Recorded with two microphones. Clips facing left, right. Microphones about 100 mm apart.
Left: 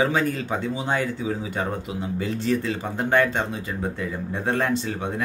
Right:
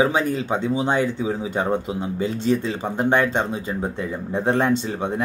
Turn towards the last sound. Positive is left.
turn(degrees=-25)  # may be behind; listen again after turning